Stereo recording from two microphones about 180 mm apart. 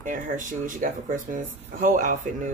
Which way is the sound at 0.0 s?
45° right (ahead or behind).